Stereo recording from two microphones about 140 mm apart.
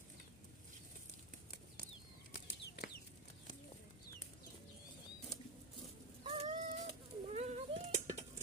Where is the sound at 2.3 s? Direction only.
90° left.